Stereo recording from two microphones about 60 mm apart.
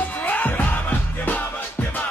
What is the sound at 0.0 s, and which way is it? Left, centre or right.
Music, left.